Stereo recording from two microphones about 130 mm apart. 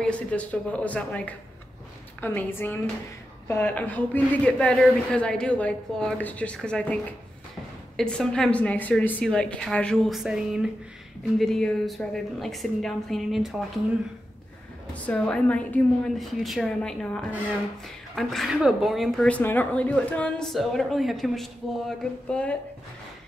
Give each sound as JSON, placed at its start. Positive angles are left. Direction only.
{"t": 0.0, "sound": "speech", "side_deg": 10}
{"t": 15.0, "sound": "speech", "side_deg": 10}
{"t": 16.2, "sound": "speech", "side_deg": 0}